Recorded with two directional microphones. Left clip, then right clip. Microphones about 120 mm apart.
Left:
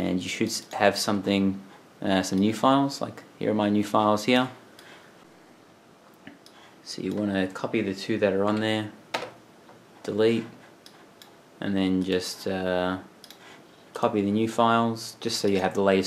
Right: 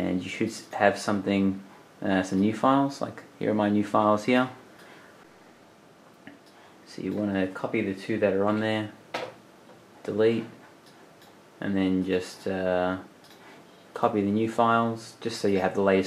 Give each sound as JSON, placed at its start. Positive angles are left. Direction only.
{"t": 0.7, "sound": "speech", "side_deg": 30}
{"t": 7.1, "sound": "speech", "side_deg": 30}
{"t": 10.0, "sound": "speech", "side_deg": 20}
{"t": 11.6, "sound": "speech", "side_deg": 25}